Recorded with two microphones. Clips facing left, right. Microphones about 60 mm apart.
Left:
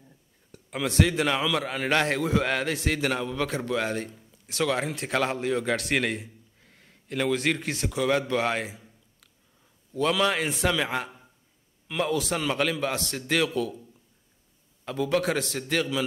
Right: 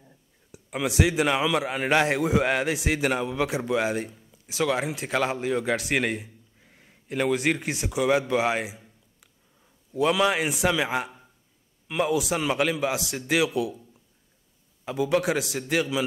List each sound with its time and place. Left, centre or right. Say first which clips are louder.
0.0 s a man's voice: even; centre
14.9 s a man's voice: right 2 dB; centre